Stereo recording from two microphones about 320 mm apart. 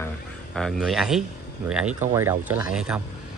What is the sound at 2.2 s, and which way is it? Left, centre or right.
Speech, centre.